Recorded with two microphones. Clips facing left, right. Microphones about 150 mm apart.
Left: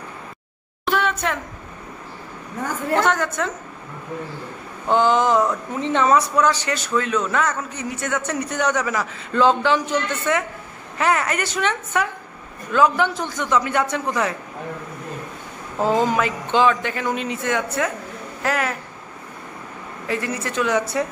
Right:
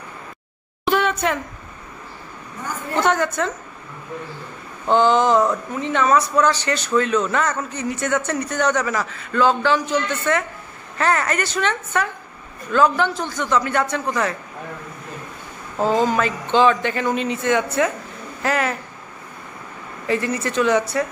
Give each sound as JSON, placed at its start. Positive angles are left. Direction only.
{"t": 0.8, "sound": "a sound", "side_deg": 0}
{"t": 3.1, "sound": "a man's voice", "side_deg": 0}
{"t": 4.8, "sound": "a man's voice", "side_deg": 5}
{"t": 5.8, "sound": "a man's voice", "side_deg": 25}
{"t": 6.3, "sound": "a man's voice", "side_deg": 10}
{"t": 9.2, "sound": "a man's voice", "side_deg": 25}
{"t": 15.8, "sound": "a man's voice", "side_deg": 15}
{"t": 20.1, "sound": "a man's voice", "side_deg": 5}